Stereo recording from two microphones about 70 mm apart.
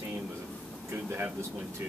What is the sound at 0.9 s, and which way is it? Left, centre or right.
Speech, right.